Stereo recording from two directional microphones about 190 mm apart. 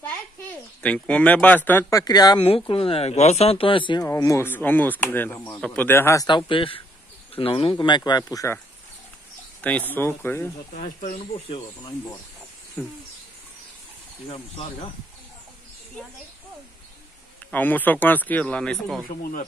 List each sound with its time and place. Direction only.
0.8 s speech: 5° left (ahead or behind)
9.6 s speech: 10° left (ahead or behind)
10.7 s speech: 40° left (ahead or behind)
12.8 s speech: 10° left (ahead or behind)
14.3 s speech: 30° left (ahead or behind)
17.5 s speech: 10° left (ahead or behind)